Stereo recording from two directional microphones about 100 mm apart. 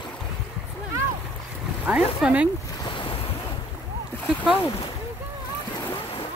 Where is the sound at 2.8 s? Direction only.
55° left (ahead or behind).